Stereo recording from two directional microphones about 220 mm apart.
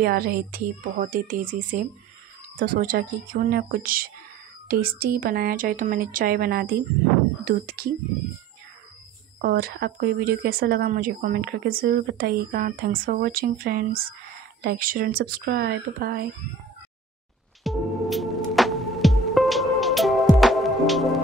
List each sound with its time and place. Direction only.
0.0 s a woman's voice: 40° right (ahead or behind)
9.4 s speech: 45° right (ahead or behind)
17.6 s music: centre (ahead or behind)